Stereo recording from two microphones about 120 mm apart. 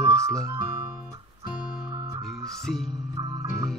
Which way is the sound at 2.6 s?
5° left (ahead or behind).